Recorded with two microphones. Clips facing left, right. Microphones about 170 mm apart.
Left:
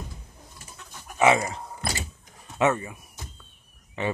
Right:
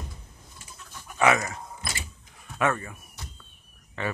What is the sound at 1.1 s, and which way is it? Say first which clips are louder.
Speech: left 2 dB; 25° left (ahead or behind).